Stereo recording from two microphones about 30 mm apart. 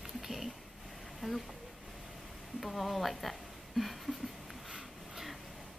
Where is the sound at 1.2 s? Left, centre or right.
Right.